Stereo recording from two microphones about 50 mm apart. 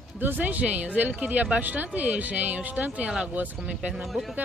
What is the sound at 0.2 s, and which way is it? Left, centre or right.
A woman's voice, right.